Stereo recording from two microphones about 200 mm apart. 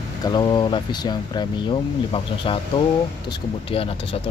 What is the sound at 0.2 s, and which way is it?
Speech, 20° left (ahead or behind).